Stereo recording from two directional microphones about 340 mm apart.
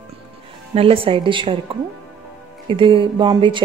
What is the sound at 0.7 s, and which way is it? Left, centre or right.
Speech, centre.